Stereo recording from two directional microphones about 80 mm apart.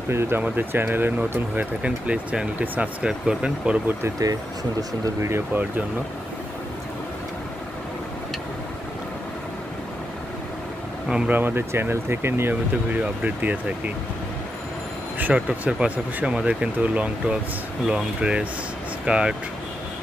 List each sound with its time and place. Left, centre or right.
0.1 s speech: right
0.4 s speech: right
5.2 s speech: right
11.2 s speech: right
12.9 s speech: centre
15.1 s speech: centre